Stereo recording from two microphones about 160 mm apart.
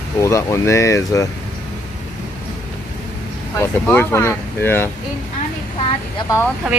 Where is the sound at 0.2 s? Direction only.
20° left (ahead or behind).